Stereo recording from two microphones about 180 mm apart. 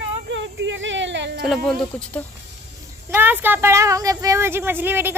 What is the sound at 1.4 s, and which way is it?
Speech, centre (ahead or behind).